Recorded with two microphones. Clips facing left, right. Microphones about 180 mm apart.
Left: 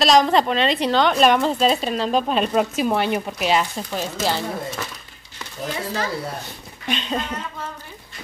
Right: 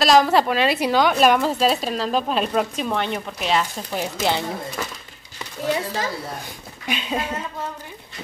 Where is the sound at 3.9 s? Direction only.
20° right (ahead or behind).